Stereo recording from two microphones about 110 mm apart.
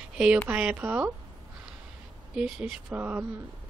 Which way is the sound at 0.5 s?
10° right (ahead or behind).